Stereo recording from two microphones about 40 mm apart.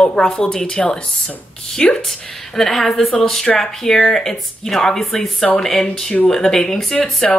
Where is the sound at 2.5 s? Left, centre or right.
Centre.